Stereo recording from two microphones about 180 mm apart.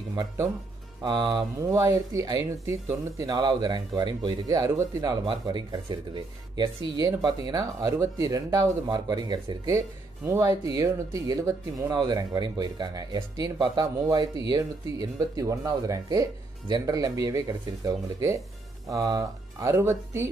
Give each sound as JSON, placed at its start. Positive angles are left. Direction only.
{"t": 0.1, "sound": "speech", "side_deg": -20}